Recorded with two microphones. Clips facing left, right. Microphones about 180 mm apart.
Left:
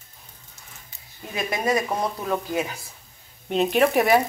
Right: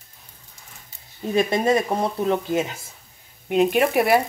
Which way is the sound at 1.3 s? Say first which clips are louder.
Right 5 dB; 25° right (ahead or behind).